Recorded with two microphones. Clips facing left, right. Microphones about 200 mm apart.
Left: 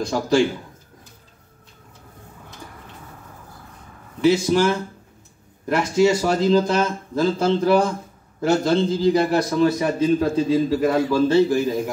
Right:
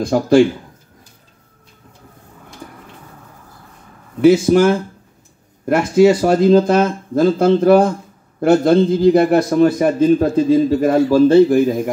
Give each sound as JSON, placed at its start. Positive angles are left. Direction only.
{"t": 0.0, "sound": "speech", "side_deg": -55}
{"t": 4.2, "sound": "speech", "side_deg": -55}